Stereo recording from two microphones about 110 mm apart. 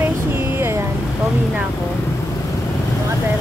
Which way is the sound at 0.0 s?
20° right (ahead or behind).